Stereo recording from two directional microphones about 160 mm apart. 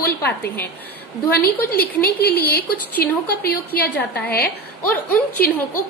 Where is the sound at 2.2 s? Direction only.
75° left (ahead or behind).